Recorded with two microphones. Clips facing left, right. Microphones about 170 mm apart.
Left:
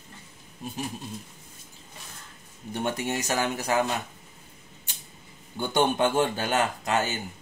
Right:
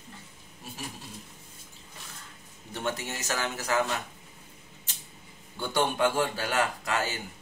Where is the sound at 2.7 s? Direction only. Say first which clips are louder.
Left 5 dB; 15° left (ahead or behind).